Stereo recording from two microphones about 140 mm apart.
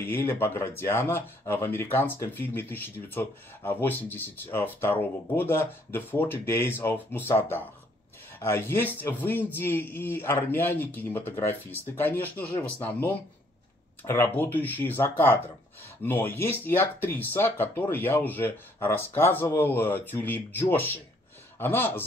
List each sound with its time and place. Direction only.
0.0 s speech: 15° left (ahead or behind)